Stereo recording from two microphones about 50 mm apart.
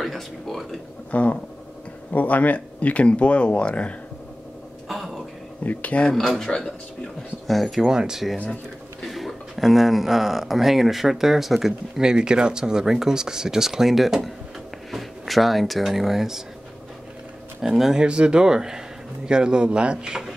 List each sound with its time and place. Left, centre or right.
0.0 s speech: centre
1.1 s speech: left
4.8 s a sound: centre
5.6 s speech: left
6.0 s speech: centre
7.8 s speech: centre
9.0 s speech: centre
17.6 s speech: centre
18.0 s speech: centre